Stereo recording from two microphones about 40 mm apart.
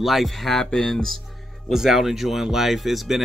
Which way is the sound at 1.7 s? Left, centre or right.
Centre.